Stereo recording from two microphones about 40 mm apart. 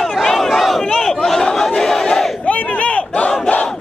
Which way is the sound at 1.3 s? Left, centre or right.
Centre.